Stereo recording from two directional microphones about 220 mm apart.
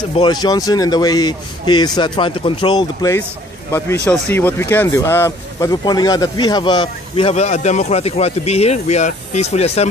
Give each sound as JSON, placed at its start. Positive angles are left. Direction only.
{"t": 0.1, "sound": "speech", "side_deg": 20}
{"t": 3.7, "sound": "speech", "side_deg": 10}